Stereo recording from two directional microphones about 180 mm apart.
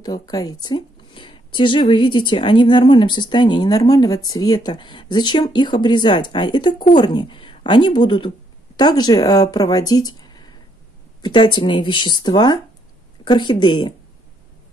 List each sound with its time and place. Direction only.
0.0 s speech: 20° left (ahead or behind)